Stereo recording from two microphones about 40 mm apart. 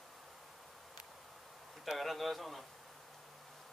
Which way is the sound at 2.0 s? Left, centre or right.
Centre.